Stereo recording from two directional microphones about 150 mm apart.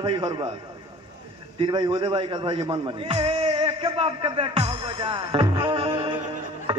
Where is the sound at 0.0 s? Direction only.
30° right (ahead or behind).